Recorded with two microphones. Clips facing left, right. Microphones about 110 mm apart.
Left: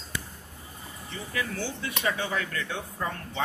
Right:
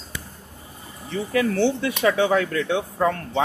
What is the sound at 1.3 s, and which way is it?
Speech, 70° right (ahead or behind).